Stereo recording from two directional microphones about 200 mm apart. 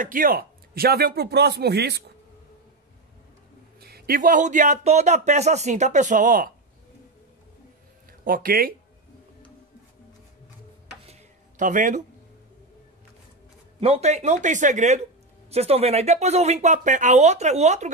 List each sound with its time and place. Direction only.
0.0 s a man's voice: 45° right (ahead or behind)
3.8 s speech: 50° right (ahead or behind)
8.1 s speech: 45° right (ahead or behind)
11.1 s a sound: 40° right (ahead or behind)
13.7 s speech: 30° right (ahead or behind)